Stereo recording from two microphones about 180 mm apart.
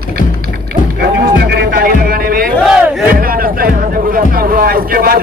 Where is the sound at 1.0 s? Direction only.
65° right (ahead or behind).